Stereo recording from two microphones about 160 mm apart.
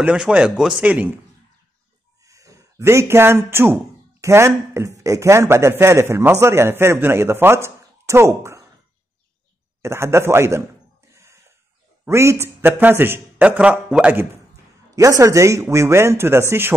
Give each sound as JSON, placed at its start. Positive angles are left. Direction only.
{"t": 0.0, "sound": "a man's voice", "side_deg": -5}
{"t": 2.2, "sound": "speech", "side_deg": -20}
{"t": 9.8, "sound": "a man's voice", "side_deg": -15}
{"t": 12.0, "sound": "a man's voice", "side_deg": -15}